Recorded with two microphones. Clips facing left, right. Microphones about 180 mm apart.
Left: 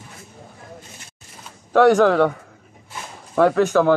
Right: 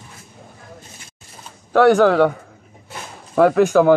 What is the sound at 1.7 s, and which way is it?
Speech, centre (ahead or behind).